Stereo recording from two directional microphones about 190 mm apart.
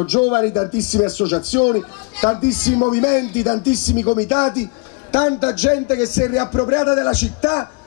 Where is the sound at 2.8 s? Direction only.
30° left (ahead or behind).